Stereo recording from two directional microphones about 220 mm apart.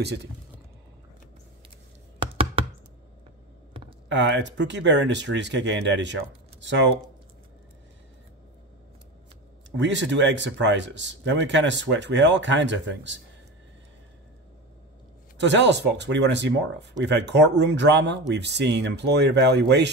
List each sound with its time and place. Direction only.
2.1 s knock: 25° right (ahead or behind)
4.1 s speech: 55° right (ahead or behind)
9.8 s speech: 55° right (ahead or behind)
15.3 s speech: 55° right (ahead or behind)